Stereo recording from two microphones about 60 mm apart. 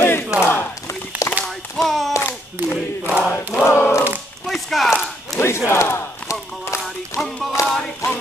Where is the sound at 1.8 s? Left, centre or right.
Centre.